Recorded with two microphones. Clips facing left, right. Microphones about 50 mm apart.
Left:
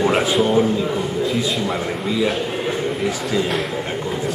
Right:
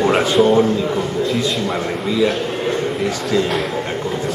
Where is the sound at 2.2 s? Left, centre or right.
Centre.